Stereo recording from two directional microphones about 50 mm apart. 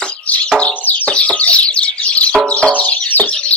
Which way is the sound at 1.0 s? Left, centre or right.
Left.